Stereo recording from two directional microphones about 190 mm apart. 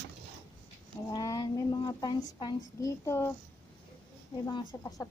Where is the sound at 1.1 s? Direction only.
20° left (ahead or behind).